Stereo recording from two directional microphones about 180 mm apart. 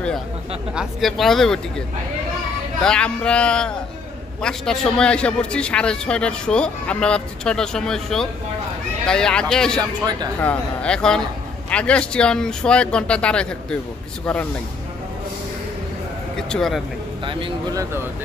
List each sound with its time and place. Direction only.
0.7 s a man's voice: centre (ahead or behind)
2.8 s a man's voice: 5° left (ahead or behind)
9.8 s speech: 20° right (ahead or behind)
10.4 s a man's voice: 5° left (ahead or behind)
16.3 s speech: 5° left (ahead or behind)
17.2 s speech: 30° right (ahead or behind)